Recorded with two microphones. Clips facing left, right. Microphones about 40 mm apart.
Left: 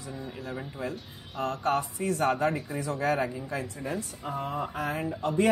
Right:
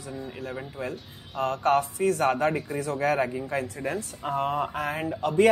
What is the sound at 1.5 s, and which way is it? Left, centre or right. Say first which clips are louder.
Speech: right 5 dB; right.